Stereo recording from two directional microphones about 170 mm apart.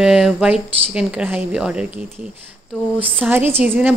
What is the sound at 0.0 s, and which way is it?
Speech, 5° right (ahead or behind).